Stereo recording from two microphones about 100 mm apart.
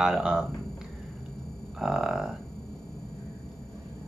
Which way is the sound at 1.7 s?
5° right (ahead or behind).